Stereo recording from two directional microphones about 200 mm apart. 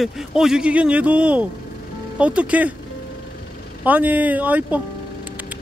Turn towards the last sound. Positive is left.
turn(degrees=-10)  # may be behind; listen again after turning